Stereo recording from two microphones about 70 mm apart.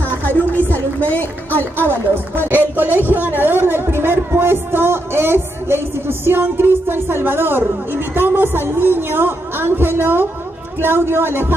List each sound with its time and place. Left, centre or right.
0.2 s a sound: left
0.7 s speech: left
2.3 s a man's voice: right